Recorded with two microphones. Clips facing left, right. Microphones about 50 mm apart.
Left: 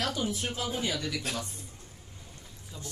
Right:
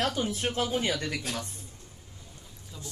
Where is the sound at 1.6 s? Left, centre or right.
Left.